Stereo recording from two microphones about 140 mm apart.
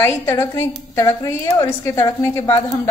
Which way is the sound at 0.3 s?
20° left (ahead or behind).